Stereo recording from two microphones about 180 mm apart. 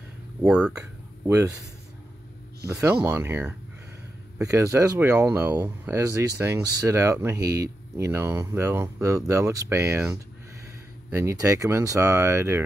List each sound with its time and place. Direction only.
0.4 s speech: 5° right (ahead or behind)
0.7 s a sound: 15° right (ahead or behind)
2.6 s speech: 15° right (ahead or behind)